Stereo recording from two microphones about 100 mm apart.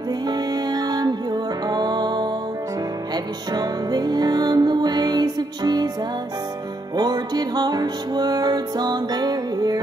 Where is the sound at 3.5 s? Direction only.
45° right (ahead or behind).